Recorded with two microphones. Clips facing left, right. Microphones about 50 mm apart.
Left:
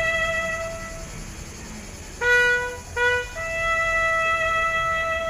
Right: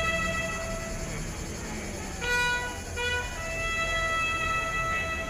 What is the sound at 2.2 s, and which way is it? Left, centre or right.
Music, left.